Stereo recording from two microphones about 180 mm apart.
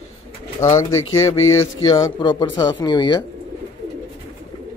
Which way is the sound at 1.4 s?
90° left.